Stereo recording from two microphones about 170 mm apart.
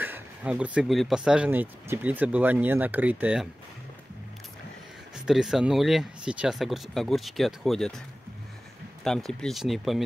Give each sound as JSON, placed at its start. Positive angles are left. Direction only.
{"t": 0.0, "sound": "speech", "side_deg": -10}
{"t": 5.2, "sound": "speech", "side_deg": 0}
{"t": 9.0, "sound": "speech", "side_deg": 5}